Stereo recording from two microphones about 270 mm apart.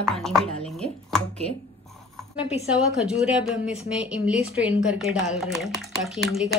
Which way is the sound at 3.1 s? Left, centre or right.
Centre.